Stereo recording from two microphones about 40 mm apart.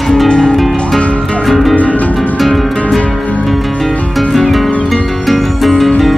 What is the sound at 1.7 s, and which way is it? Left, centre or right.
Music, left.